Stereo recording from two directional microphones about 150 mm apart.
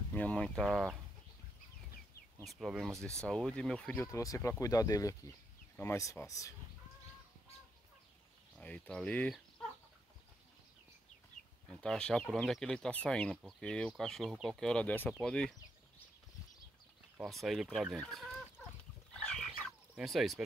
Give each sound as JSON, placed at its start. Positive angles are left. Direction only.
{"t": 0.1, "sound": "speech", "side_deg": 10}
{"t": 2.4, "sound": "speech", "side_deg": 0}
{"t": 8.5, "sound": "speech", "side_deg": 10}
{"t": 11.7, "sound": "speech", "side_deg": 5}
{"t": 17.2, "sound": "speech", "side_deg": 0}
{"t": 19.1, "sound": "a sound", "side_deg": 5}
{"t": 20.0, "sound": "speech", "side_deg": 0}